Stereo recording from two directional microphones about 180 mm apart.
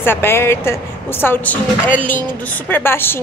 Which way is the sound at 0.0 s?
15° left (ahead or behind).